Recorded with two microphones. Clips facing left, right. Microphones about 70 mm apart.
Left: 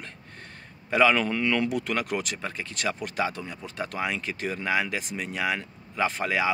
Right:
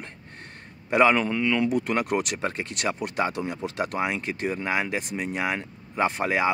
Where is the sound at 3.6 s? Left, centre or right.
Right.